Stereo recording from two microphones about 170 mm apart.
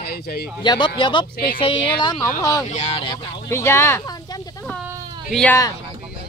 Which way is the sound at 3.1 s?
15° left (ahead or behind).